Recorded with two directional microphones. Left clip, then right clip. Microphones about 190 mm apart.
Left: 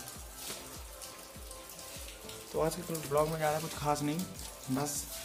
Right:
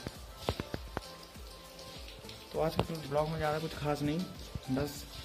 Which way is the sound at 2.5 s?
5° left (ahead or behind).